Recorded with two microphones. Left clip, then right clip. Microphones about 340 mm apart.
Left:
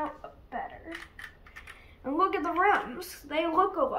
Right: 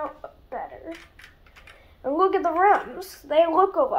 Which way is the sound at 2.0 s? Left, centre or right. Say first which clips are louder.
Right 6 dB; centre.